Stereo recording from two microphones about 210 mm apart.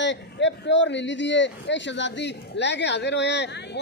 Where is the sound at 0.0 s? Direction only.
60° left (ahead or behind).